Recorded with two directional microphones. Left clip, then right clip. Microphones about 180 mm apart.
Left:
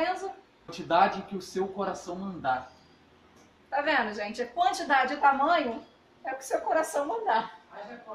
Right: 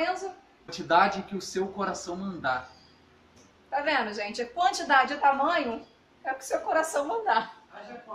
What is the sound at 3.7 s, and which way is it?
Speech, 5° right (ahead or behind).